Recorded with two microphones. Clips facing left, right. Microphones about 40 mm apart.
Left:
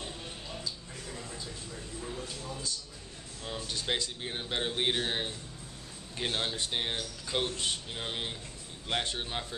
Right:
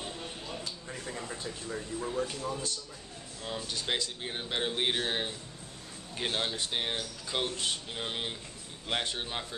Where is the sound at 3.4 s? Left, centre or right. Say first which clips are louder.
Right 1 dB; centre.